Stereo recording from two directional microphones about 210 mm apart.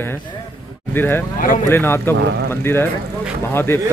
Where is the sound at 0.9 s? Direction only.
10° left (ahead or behind).